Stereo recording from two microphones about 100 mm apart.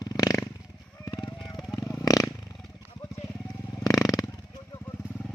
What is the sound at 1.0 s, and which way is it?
Vehicle, 40° left (ahead or behind).